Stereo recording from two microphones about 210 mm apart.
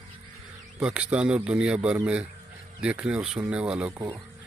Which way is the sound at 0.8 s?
5° right (ahead or behind).